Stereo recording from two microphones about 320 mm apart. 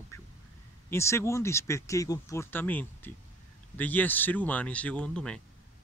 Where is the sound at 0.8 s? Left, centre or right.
Centre.